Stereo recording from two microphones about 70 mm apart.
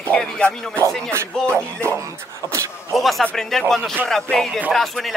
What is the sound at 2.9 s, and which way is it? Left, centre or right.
Speech, centre.